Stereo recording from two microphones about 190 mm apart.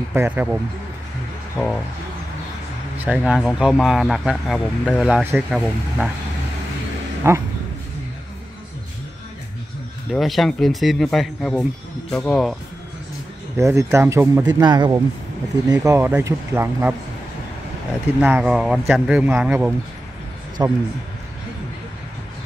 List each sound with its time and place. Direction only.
0.1 s speech: 10° right (ahead or behind)
3.1 s speech: 5° right (ahead or behind)
7.2 s speech: 15° right (ahead or behind)
10.1 s speech: centre (ahead or behind)
13.6 s speech: 15° right (ahead or behind)
18.2 s a man's voice: 5° right (ahead or behind)